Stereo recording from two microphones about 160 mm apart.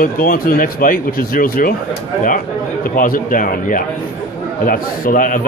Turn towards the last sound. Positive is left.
turn(degrees=60)  # may be behind; listen again after turning